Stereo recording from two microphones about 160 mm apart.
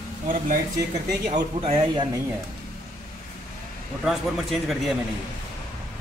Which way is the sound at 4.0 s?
Centre (ahead or behind).